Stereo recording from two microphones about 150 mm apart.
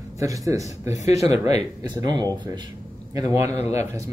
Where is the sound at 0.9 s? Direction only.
45° left (ahead or behind).